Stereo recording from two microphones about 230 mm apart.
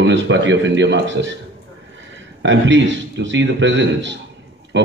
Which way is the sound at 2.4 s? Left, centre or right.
Right.